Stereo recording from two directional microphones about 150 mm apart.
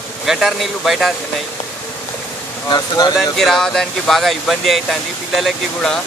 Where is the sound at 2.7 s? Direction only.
25° left (ahead or behind).